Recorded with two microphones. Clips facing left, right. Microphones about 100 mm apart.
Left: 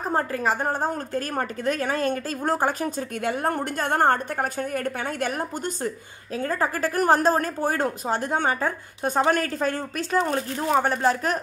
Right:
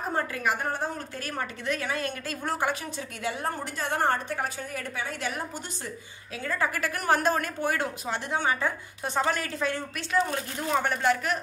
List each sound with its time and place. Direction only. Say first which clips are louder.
0.1 s a woman's voice: left 5 dB; 35° left (ahead or behind)
10.3 s speech: left 5 dB; 35° left (ahead or behind)